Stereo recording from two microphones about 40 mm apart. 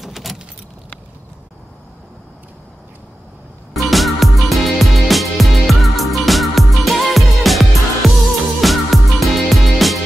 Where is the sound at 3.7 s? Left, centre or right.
Centre.